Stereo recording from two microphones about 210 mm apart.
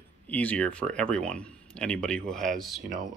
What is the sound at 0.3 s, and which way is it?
Speech, 5° left (ahead or behind).